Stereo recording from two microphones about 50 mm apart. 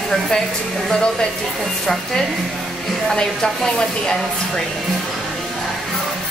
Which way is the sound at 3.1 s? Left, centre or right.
Centre.